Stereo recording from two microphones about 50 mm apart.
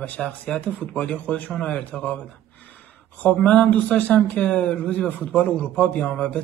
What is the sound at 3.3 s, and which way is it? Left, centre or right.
Speech, left.